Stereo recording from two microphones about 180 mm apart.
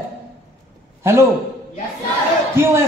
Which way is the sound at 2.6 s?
15° right (ahead or behind).